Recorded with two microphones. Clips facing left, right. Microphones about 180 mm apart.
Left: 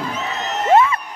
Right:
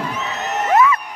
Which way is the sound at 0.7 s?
30° left (ahead or behind).